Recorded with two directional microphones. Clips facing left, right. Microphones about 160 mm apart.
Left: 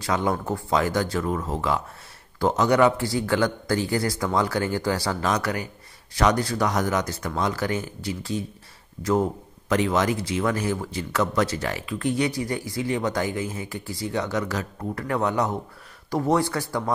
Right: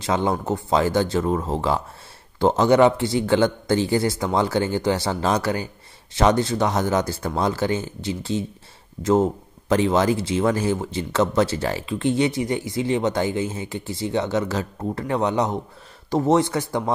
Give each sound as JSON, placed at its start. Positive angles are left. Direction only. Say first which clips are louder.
{"t": 0.0, "sound": "speech", "louder": "right 2 dB", "side_deg": -25}